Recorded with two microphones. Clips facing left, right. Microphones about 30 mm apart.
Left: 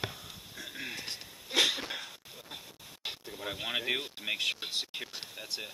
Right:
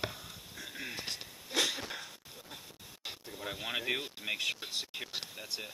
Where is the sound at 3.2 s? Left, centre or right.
Centre.